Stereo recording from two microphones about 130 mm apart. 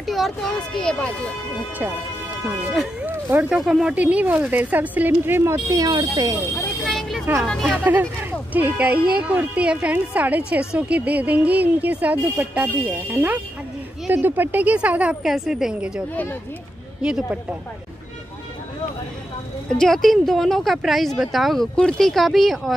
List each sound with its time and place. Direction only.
0.0 s speech: centre (ahead or behind)
2.7 s speech: centre (ahead or behind)
3.1 s speech: 15° right (ahead or behind)
3.5 s speech: 5° right (ahead or behind); by 6.3 s 30° right (ahead or behind)
6.5 s vehicle: 10° left (ahead or behind)
7.4 s speech: 5° left (ahead or behind)
7.7 s speech: 15° right (ahead or behind)
17.0 s speech: 5° right (ahead or behind)
19.8 s speech: centre (ahead or behind)